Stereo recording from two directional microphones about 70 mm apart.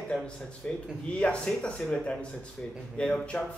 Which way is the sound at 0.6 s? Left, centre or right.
Centre.